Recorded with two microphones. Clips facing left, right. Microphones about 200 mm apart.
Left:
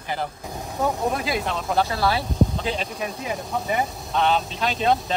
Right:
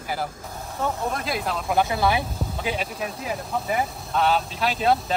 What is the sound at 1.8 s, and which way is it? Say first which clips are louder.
Speech: right 1 dB; 15° right (ahead or behind).